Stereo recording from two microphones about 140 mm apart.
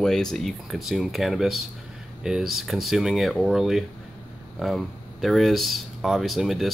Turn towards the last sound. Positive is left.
turn(degrees=0)  # may be behind; listen again after turning